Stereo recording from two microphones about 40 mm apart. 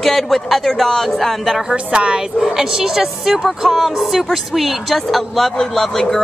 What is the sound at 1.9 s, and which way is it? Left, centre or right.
Speech, right.